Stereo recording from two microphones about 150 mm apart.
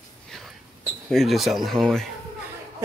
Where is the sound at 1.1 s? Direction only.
Centre (ahead or behind).